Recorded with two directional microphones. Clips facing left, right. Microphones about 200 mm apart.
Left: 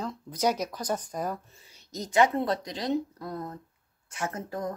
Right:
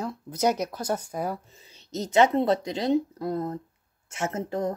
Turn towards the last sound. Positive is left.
turn(degrees=-25)  # may be behind; listen again after turning